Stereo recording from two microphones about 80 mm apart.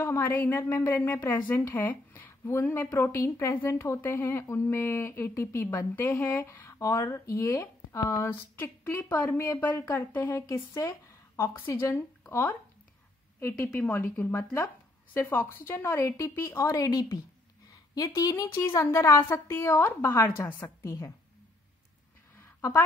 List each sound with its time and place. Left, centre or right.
0.0 s a woman's voice: left
20.8 s speech: left
22.6 s a woman's voice: left